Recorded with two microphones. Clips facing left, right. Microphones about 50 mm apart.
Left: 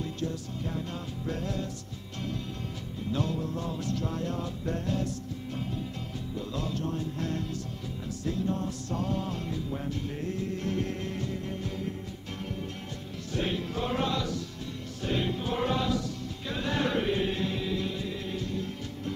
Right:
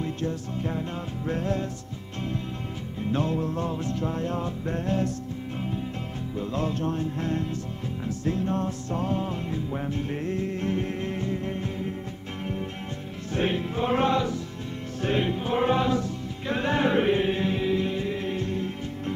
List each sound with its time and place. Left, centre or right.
0.0 s music: right
3.0 s music: right
6.3 s music: right
13.3 s music: right